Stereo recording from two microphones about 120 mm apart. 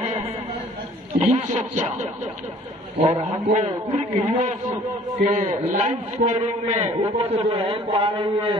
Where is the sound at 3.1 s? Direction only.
90° right.